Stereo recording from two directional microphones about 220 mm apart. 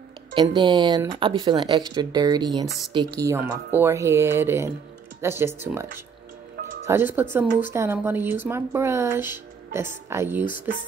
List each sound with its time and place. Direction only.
0.3 s speech: 20° right (ahead or behind)
6.9 s speech: 10° right (ahead or behind)